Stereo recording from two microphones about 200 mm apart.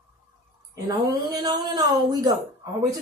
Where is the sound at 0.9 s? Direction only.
20° right (ahead or behind).